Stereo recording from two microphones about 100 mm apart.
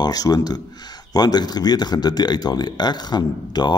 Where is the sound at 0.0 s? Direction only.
40° left (ahead or behind).